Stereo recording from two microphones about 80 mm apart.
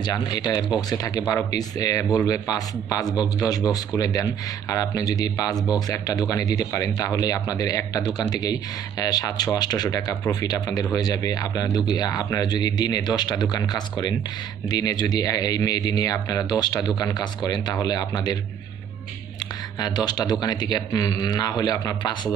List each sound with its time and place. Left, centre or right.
0.0 s speech: left
19.8 s speech: left